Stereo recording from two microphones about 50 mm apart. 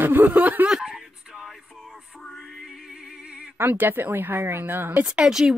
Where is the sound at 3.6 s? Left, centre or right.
Right.